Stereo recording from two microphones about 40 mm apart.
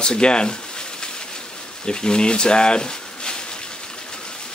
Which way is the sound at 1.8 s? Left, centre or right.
Centre.